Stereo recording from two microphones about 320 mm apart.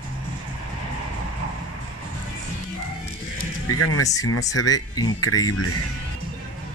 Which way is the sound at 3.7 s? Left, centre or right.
Left.